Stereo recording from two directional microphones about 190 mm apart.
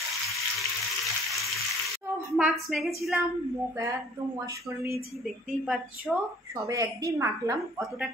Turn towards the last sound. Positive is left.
turn(degrees=-15)  # may be behind; listen again after turning